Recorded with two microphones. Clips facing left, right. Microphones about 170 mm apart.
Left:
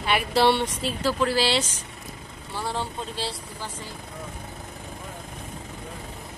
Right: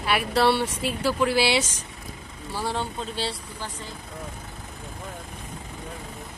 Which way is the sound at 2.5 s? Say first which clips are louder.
Right 1 dB; centre (ahead or behind).